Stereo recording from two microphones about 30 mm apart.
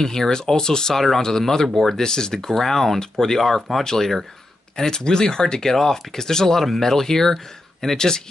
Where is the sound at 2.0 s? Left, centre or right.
Left.